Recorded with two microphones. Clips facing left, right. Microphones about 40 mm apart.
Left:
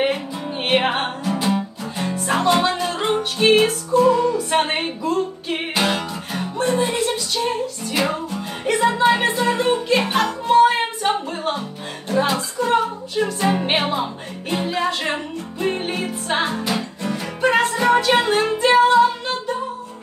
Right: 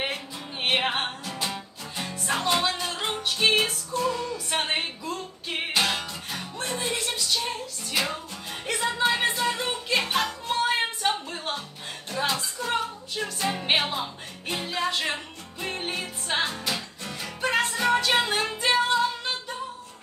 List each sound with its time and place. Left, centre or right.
0.7 s music: centre